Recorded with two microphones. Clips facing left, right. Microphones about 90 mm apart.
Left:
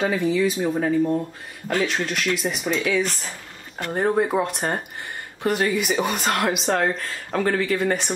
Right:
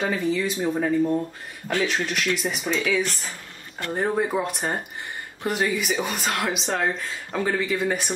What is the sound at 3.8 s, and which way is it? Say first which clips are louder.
Speech: left 3 dB; 15° left (ahead or behind).